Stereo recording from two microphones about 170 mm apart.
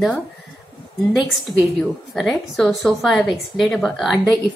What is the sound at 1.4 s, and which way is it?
A woman's voice, centre (ahead or behind).